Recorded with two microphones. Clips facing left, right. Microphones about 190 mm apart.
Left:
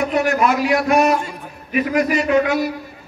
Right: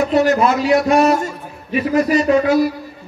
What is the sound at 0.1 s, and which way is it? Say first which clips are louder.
A man's voice: right 3 dB; 30° right (ahead or behind).